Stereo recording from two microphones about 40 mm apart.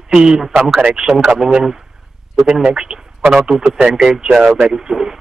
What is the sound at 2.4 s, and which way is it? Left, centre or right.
Speech, centre.